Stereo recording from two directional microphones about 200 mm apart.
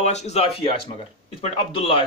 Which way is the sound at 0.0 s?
35° left (ahead or behind).